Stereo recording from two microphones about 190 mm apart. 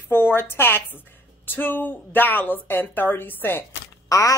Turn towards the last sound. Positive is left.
turn(degrees=15)  # may be behind; listen again after turning